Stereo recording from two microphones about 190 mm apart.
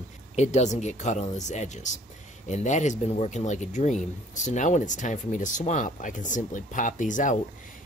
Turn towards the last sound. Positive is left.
turn(degrees=40)  # may be behind; listen again after turning